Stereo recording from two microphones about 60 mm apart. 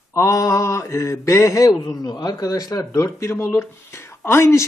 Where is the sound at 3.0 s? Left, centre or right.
Left.